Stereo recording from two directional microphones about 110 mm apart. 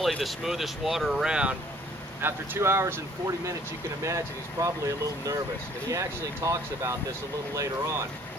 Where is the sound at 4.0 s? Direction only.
30° right (ahead or behind).